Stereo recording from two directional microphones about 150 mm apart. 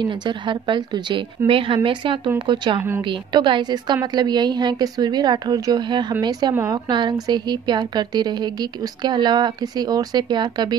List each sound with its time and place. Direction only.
0.0 s a woman's voice: 30° right (ahead or behind)
6.5 s a woman's voice: 20° right (ahead or behind)
6.9 s a woman's voice: 30° right (ahead or behind)